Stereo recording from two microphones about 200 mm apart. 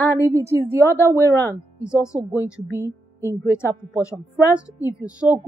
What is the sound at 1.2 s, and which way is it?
Speech, 10° left (ahead or behind).